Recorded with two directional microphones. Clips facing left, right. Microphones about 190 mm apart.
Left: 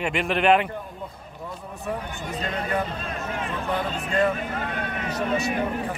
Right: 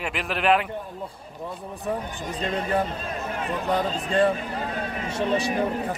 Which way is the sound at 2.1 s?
35° right (ahead or behind).